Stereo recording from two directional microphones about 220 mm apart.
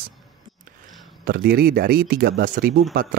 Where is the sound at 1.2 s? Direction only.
40° right (ahead or behind).